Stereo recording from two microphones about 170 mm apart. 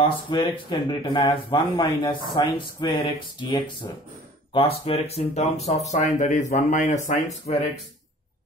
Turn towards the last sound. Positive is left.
turn(degrees=40)  # may be behind; listen again after turning